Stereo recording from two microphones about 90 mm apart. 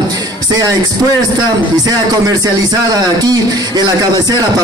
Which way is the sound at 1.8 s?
45° right (ahead or behind).